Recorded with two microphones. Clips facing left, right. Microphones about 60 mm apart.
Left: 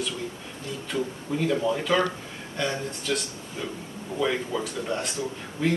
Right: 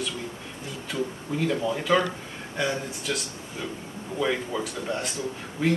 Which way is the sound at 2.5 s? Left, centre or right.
Centre.